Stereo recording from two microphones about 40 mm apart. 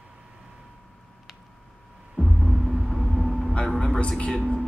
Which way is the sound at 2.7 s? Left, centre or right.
Centre.